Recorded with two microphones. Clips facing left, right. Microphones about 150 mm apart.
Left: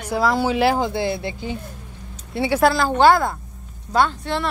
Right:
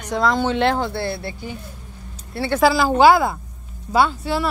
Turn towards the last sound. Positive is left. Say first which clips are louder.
# right 1 dB
turn(degrees=-5)  # may be behind; listen again after turning